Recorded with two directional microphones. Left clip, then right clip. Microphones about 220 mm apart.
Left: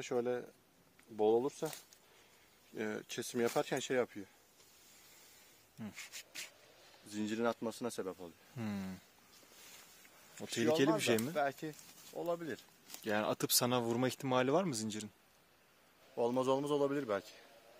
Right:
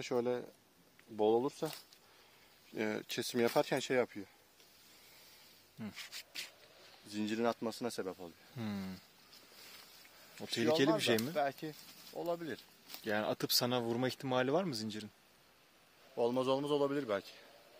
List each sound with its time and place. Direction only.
0.0 s speech: 25° right (ahead or behind)
2.7 s speech: 30° right (ahead or behind)
5.8 s speech: 5° right (ahead or behind)
8.5 s speech: 5° left (ahead or behind)
10.3 s speech: centre (ahead or behind)
16.2 s speech: 5° left (ahead or behind)